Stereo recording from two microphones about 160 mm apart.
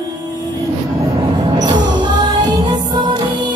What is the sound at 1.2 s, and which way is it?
Music, 25° right (ahead or behind).